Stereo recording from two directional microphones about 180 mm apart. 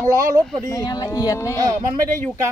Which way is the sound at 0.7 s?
20° left (ahead or behind).